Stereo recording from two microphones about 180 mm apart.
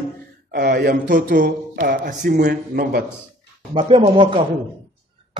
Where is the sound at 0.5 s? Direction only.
65° right (ahead or behind).